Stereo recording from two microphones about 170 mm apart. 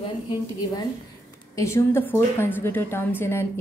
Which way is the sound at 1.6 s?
15° left (ahead or behind).